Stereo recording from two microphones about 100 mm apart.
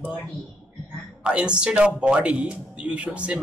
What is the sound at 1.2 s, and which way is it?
Speech, 10° right (ahead or behind).